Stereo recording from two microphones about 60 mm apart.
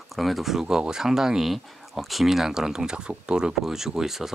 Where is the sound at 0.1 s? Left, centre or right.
Centre.